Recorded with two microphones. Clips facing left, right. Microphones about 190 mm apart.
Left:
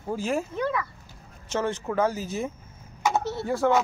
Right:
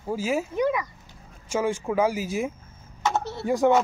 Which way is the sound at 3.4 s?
15° right (ahead or behind).